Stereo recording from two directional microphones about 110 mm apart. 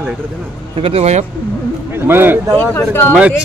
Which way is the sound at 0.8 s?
65° right (ahead or behind).